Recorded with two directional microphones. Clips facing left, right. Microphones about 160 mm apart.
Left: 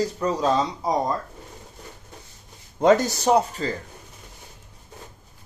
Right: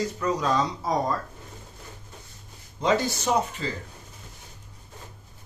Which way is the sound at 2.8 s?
45° left (ahead or behind).